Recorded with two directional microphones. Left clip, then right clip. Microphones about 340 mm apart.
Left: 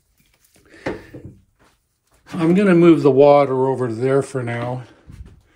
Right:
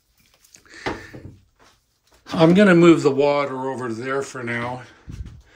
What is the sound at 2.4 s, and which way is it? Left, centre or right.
Speech, centre.